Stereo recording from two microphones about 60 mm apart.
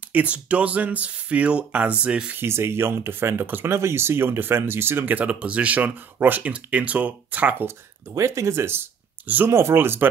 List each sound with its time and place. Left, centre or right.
0.1 s speech: right
2.3 s speech: right
6.5 s speech: right
8.1 s speech: right